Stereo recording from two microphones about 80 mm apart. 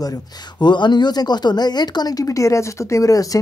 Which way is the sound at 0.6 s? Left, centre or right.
Left.